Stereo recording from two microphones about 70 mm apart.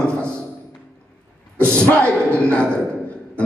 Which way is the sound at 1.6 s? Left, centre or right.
Centre.